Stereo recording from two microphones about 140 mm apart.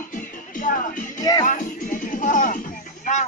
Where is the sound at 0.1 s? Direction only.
75° left (ahead or behind).